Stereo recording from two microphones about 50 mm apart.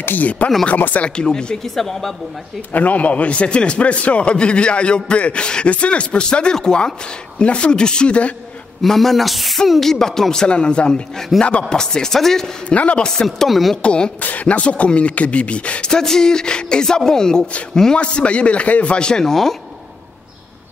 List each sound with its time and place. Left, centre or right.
0.0 s speech: left
1.0 s speech: centre
2.7 s a man's voice: left
8.8 s speech: centre
12.6 s a man's voice: left
13.0 s speech: centre
13.5 s speech: centre
13.8 s a man's voice: centre
14.2 s a man's voice: left
15.9 s a man's voice: centre